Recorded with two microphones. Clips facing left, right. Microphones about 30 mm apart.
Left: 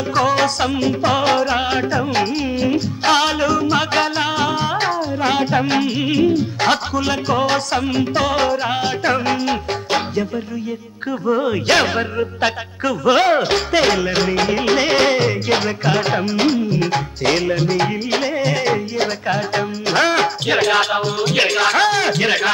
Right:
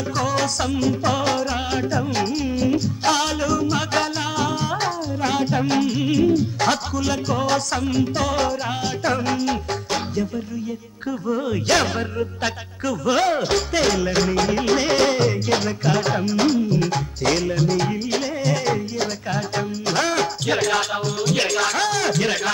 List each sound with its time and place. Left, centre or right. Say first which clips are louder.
0.1 s music: left 7 dB; left
11.2 s music: left 5 dB; left